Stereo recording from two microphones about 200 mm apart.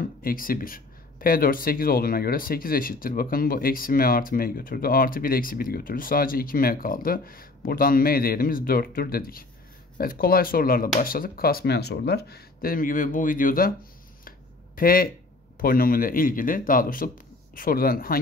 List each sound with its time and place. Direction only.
0.2 s speech: 45° left (ahead or behind)
14.8 s speech: 45° left (ahead or behind)